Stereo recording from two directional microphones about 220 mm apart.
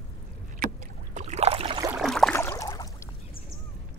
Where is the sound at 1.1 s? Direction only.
30° right (ahead or behind).